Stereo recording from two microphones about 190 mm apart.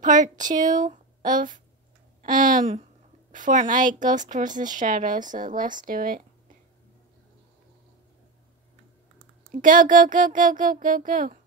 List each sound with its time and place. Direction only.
0.0 s a woman's voice: 40° right (ahead or behind)
9.5 s a woman's voice: 45° right (ahead or behind)